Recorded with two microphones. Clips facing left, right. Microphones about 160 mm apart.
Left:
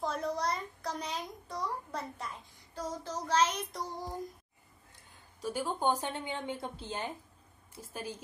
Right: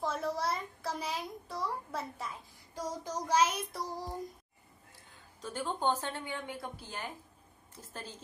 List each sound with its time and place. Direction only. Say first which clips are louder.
0.0 s a sound: even; centre (ahead or behind)
5.4 s a woman's voice: left 2 dB; 10° left (ahead or behind)
7.7 s a woman's voice: left 4 dB; 10° left (ahead or behind)